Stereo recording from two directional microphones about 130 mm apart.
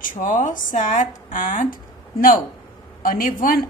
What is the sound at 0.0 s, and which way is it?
Speech, 90° left.